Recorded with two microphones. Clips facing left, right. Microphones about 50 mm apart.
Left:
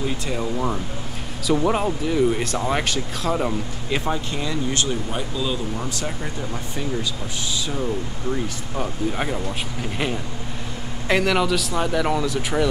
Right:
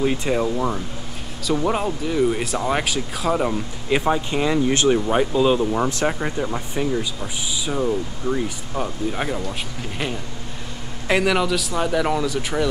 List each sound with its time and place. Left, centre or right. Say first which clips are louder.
0.0 s speech: right 5 dB; right
1.5 s speech: left 1 dB; centre
4.0 s speech: right 5 dB; right
6.4 s speech: right 4 dB; centre